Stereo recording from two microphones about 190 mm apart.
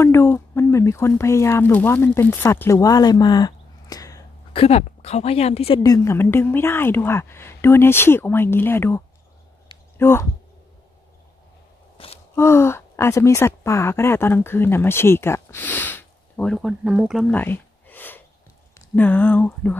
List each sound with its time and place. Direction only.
0.0 s speech: 15° left (ahead or behind)
4.6 s a woman's voice: 35° left (ahead or behind)
5.8 s a woman's voice: 20° left (ahead or behind)
12.4 s speech: 15° left (ahead or behind); by 17.3 s 5° right (ahead or behind)
17.3 s a sound: 10° left (ahead or behind)
18.8 s a woman's voice: 10° left (ahead or behind)